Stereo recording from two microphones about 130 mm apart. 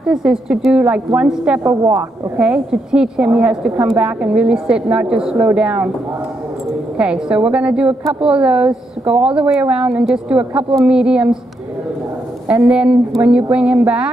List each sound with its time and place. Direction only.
0.0 s a woman's voice: 5° right (ahead or behind)
1.6 s a woman's voice: 20° right (ahead or behind)
7.0 s a woman's voice: 10° right (ahead or behind)
12.4 s a woman's voice: 10° right (ahead or behind)